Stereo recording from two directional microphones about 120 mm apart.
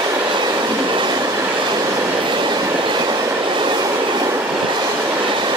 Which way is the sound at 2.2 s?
40° right (ahead or behind).